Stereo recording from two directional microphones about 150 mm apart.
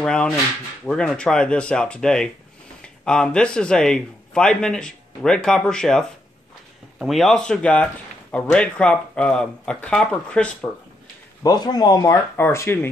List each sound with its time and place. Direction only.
0.0 s a man's voice: 5° left (ahead or behind)
11.4 s a man's voice: 25° left (ahead or behind)